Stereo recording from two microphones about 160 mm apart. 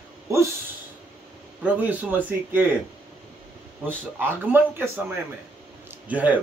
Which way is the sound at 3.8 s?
15° right (ahead or behind).